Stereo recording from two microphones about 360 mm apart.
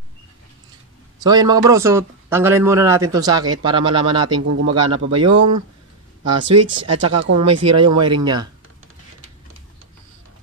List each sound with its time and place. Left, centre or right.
1.2 s a man's voice: centre
3.8 s speech: right
6.2 s speech: right
8.0 s a man's voice: centre